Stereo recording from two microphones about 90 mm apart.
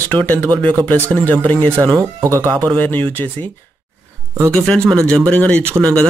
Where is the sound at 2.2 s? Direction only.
35° right (ahead or behind).